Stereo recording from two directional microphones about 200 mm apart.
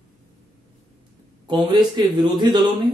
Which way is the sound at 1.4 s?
20° right (ahead or behind).